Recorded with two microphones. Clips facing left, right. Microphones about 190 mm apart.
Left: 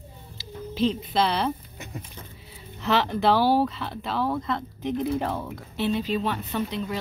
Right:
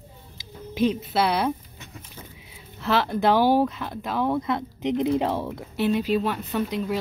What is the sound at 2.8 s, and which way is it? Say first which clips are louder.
Speech: right 1 dB; 5° right (ahead or behind).